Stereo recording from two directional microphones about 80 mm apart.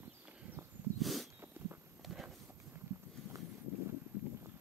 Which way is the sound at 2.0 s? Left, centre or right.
Centre.